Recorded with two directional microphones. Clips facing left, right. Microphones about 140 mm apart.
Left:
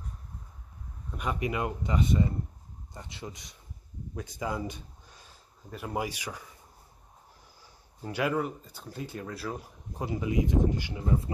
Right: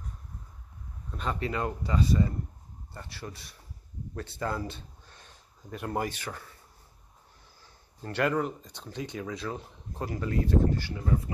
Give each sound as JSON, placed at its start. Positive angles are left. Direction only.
{"t": 1.1, "sound": "speech", "side_deg": 10}
{"t": 7.6, "sound": "speech", "side_deg": 10}